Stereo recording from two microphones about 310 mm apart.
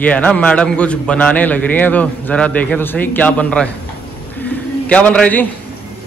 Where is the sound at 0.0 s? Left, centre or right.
Centre.